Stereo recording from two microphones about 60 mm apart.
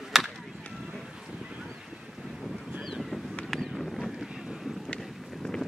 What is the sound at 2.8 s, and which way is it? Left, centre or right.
Boat, centre.